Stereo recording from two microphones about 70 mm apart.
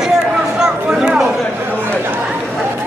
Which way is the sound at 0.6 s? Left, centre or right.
Centre.